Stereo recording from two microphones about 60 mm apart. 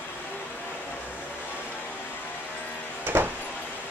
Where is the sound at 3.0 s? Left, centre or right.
Right.